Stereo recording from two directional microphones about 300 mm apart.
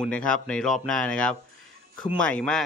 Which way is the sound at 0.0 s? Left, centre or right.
Centre.